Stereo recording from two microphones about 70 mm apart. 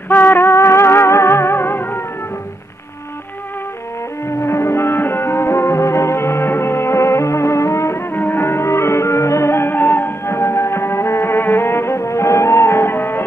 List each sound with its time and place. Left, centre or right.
0.1 s music: left
4.4 s music: left
8.1 s music: left